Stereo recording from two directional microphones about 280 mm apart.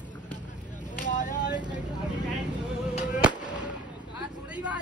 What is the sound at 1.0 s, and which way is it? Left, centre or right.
Vehicle, left.